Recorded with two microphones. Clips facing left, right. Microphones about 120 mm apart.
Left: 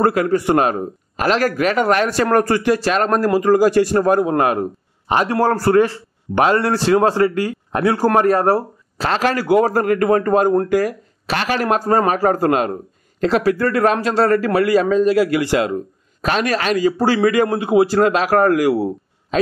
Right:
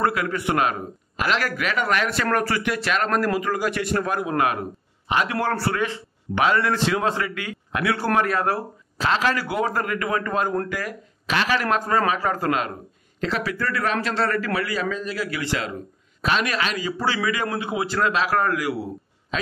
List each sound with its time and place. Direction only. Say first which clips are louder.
0.0 s a man's voice: left 7 dB; 40° left (ahead or behind)